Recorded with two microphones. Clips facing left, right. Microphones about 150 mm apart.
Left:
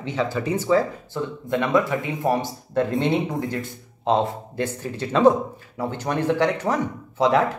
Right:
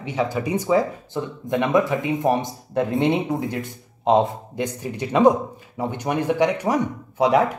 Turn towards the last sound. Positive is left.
turn(degrees=-15)  # may be behind; listen again after turning